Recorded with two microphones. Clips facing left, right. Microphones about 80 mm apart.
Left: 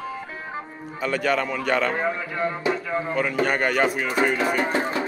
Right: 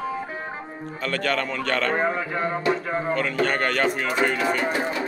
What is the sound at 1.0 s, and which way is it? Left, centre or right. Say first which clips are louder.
Speech: left 2 dB; centre.